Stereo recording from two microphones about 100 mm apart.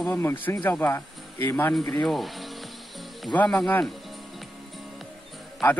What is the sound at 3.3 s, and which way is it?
Speech, 10° left (ahead or behind).